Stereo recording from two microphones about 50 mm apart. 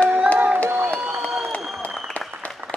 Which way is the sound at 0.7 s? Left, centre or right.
Right.